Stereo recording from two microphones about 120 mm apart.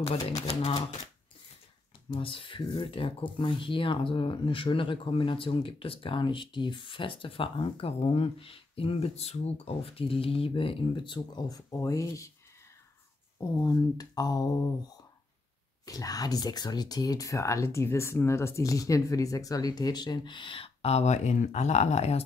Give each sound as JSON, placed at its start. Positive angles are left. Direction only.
{"t": 0.4, "sound": "speech", "side_deg": 60}
{"t": 2.0, "sound": "speech", "side_deg": 45}
{"t": 13.6, "sound": "speech", "side_deg": 30}
{"t": 15.8, "sound": "speech", "side_deg": 30}